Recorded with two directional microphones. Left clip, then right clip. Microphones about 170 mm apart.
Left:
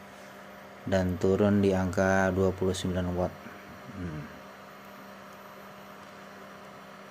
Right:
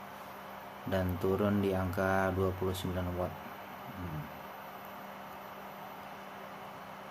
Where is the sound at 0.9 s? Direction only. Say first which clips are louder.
Left 6 dB; 30° left (ahead or behind).